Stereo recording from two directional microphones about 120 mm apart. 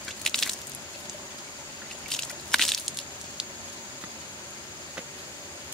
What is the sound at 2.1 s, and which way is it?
Squish, 5° left (ahead or behind).